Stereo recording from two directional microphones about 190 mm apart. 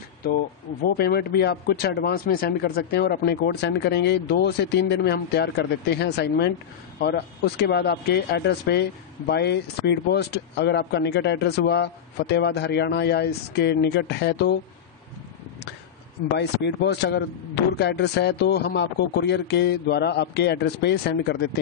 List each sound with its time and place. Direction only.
0.2 s speech: 55° left (ahead or behind)
16.3 s speech: 65° left (ahead or behind)